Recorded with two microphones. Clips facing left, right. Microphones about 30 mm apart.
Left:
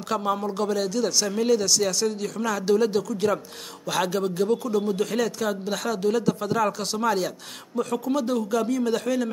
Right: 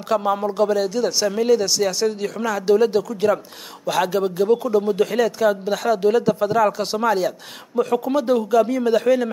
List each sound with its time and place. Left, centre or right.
0.1 s speech: centre
6.8 s speech: right
7.1 s speech: centre
7.7 s speech: right